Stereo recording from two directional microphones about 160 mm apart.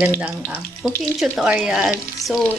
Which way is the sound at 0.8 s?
5° right (ahead or behind).